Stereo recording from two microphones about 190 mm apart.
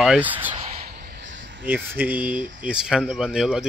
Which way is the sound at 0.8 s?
55° right (ahead or behind).